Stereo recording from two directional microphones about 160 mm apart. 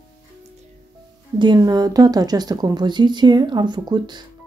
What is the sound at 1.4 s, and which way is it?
Speech, 25° right (ahead or behind).